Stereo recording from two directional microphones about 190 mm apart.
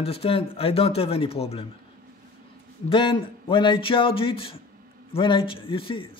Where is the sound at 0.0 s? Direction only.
30° left (ahead or behind).